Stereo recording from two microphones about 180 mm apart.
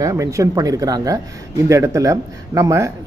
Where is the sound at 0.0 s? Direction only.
15° right (ahead or behind).